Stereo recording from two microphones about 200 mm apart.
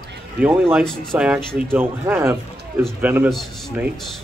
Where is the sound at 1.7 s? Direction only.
10° right (ahead or behind).